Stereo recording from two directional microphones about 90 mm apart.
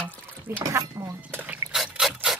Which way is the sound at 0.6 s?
40° right (ahead or behind).